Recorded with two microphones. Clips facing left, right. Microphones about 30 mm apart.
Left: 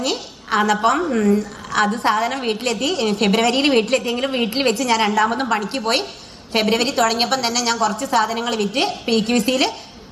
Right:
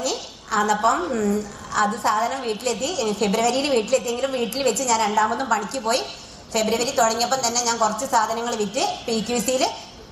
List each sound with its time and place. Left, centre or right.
0.0 s a woman's voice: left